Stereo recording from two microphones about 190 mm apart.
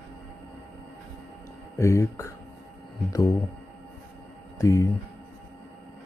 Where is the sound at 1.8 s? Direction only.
15° left (ahead or behind).